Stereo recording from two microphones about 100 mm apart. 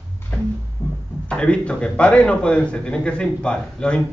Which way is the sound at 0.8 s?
25° left (ahead or behind).